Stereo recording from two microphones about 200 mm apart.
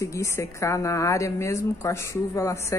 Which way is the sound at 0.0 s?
15° left (ahead or behind).